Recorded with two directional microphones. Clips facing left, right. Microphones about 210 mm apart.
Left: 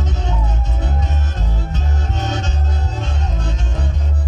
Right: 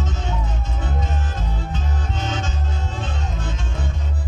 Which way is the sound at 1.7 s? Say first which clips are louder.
Left 2 dB; 40° left (ahead or behind).